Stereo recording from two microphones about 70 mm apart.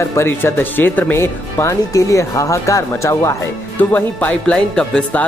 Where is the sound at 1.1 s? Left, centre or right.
Left.